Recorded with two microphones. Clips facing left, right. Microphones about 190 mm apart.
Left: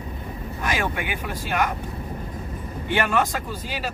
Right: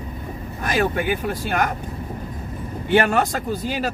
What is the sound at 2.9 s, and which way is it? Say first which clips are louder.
Speech: right 5 dB; 45° right (ahead or behind).